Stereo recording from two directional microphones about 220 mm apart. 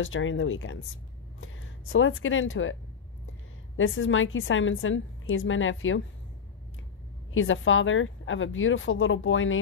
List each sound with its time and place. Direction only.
0.0 s a woman's voice: 60° left (ahead or behind)
7.3 s a woman's voice: 60° left (ahead or behind)